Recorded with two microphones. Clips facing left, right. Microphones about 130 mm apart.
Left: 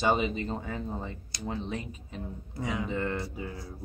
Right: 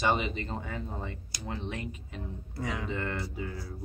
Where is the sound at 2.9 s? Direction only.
5° left (ahead or behind).